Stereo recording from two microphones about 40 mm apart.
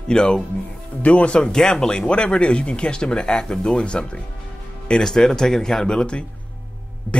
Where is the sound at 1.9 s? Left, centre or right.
Left.